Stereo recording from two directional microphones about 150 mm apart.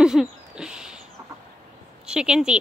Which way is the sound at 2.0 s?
5° right (ahead or behind).